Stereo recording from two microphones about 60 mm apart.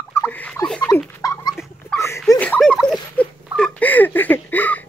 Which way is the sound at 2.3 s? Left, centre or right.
Left.